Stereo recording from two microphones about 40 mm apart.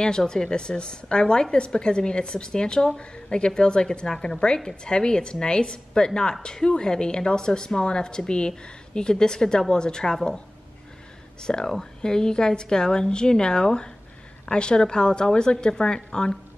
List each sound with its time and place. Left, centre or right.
0.3 s a woman's voice: left
11.4 s a woman's voice: centre